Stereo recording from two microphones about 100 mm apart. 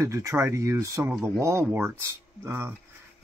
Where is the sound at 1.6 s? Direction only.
20° right (ahead or behind).